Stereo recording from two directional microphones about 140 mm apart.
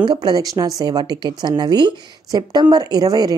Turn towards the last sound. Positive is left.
turn(degrees=-30)  # may be behind; listen again after turning